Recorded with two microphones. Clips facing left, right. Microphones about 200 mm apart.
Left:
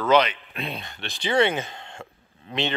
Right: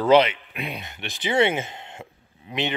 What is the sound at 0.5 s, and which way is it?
Speech, 15° right (ahead or behind).